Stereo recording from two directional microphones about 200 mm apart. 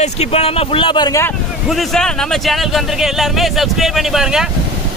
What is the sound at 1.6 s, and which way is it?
Speech, centre (ahead or behind).